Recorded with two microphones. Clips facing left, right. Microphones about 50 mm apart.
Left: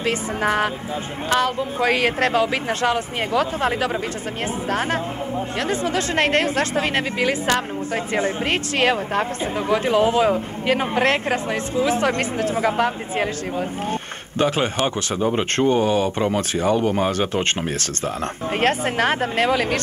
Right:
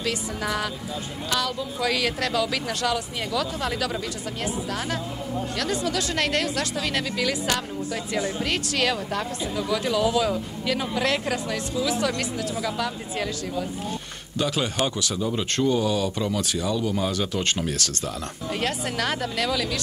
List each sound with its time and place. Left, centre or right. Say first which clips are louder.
0.0 s a woman's voice: left 6 dB; left